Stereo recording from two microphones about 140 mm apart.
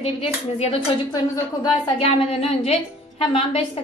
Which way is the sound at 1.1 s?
30° left (ahead or behind).